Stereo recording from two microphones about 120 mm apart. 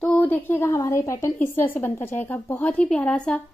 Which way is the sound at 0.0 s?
10° left (ahead or behind).